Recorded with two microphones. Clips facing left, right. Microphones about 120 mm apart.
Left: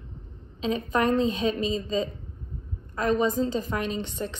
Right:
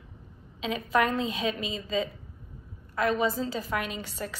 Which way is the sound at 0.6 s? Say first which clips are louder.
Left 2 dB; 35° left (ahead or behind).